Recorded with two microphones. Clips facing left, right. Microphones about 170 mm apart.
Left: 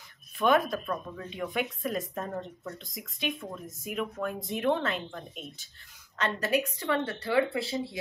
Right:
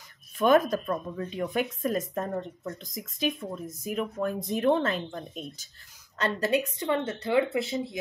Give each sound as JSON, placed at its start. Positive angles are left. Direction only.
{"t": 0.4, "sound": "speech", "side_deg": -40}